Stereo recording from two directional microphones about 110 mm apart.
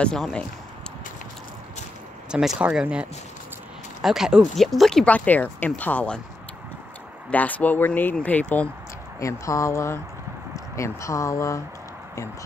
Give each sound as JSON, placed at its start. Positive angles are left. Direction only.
{"t": 0.0, "sound": "speech", "side_deg": 5}
{"t": 2.3, "sound": "speech", "side_deg": -10}
{"t": 7.2, "sound": "speech", "side_deg": 15}
{"t": 9.2, "sound": "speech", "side_deg": 30}